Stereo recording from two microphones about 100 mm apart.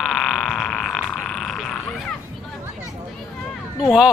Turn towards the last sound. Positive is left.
turn(degrees=-5)  # may be behind; listen again after turning